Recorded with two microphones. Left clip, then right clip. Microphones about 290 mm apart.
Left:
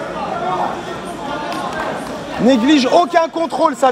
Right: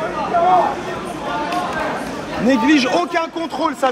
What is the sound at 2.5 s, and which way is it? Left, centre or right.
A man's voice, left.